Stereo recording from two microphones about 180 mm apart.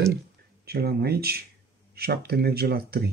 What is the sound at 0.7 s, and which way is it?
Speech, 60° right (ahead or behind).